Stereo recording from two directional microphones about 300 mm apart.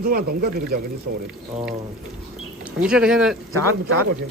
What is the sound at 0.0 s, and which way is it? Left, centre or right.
Speech, right.